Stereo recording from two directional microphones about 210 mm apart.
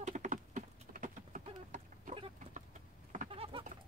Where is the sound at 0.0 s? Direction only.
35° right (ahead or behind).